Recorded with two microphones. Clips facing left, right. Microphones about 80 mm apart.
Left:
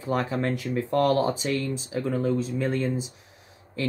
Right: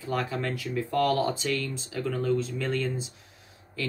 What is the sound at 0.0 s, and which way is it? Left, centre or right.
Speech, left.